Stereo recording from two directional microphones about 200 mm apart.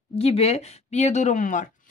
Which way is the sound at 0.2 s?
30° left (ahead or behind).